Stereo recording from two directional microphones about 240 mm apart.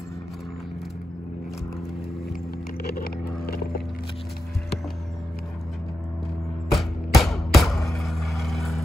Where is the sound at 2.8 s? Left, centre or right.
Left.